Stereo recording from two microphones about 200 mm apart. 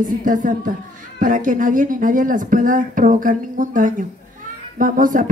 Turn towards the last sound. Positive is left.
turn(degrees=-40)  # may be behind; listen again after turning